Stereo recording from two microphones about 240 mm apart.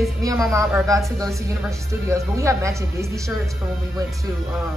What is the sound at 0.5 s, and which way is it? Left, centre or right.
A woman's voice, centre.